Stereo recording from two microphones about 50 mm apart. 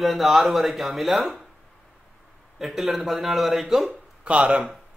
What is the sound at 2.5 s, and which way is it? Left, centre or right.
Speech, centre.